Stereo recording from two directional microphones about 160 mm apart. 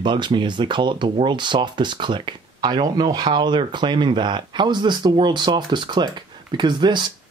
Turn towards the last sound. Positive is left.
turn(degrees=-30)  # may be behind; listen again after turning